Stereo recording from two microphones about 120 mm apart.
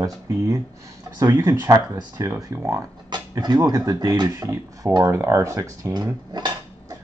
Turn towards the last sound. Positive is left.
turn(degrees=-30)  # may be behind; listen again after turning